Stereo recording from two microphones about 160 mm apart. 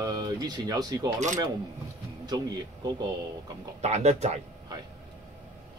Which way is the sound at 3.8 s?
45° right (ahead or behind).